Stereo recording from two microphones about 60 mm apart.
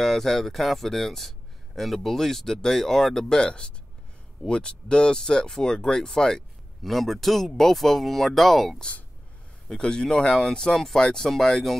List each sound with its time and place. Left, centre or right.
0.0 s speech: centre
9.7 s speech: centre